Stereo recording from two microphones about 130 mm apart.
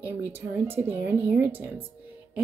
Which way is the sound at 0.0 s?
15° right (ahead or behind).